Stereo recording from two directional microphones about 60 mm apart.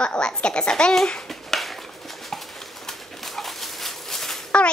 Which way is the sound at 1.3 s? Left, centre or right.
Centre.